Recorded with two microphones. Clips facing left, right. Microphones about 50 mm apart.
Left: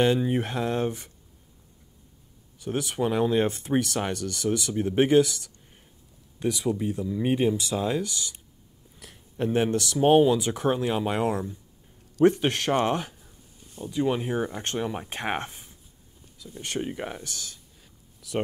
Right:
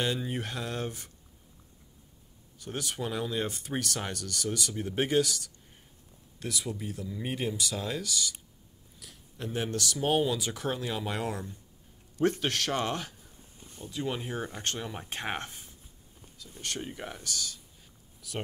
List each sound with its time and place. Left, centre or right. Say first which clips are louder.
0.0 s speech: left 9 dB; left
2.6 s speech: left 8 dB; left
6.4 s speech: left 9 dB; left